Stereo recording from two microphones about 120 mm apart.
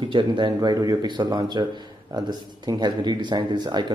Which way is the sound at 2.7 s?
35° right (ahead or behind).